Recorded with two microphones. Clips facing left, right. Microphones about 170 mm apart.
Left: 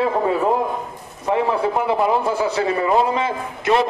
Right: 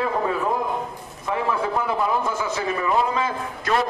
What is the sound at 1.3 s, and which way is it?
A man's voice, 25° left (ahead or behind).